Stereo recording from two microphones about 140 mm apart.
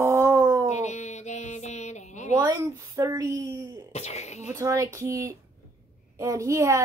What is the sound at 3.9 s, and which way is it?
Speech, 50° left (ahead or behind).